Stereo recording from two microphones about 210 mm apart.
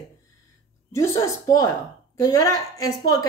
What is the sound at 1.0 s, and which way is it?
Speech, 15° left (ahead or behind).